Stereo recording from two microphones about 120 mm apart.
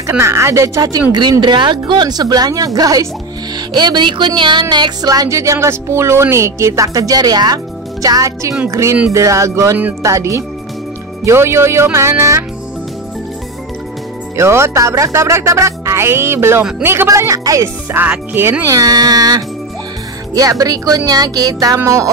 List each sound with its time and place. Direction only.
0.2 s speech: 25° right (ahead or behind)
1.4 s speech: 40° right (ahead or behind); by 12.4 s 25° right (ahead or behind)
14.3 s speech: 20° right (ahead or behind)
17.9 s speech: 15° right (ahead or behind)